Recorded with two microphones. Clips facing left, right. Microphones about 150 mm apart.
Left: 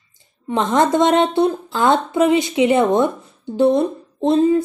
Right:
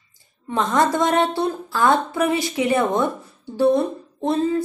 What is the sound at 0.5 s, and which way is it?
A woman's voice, 20° left (ahead or behind).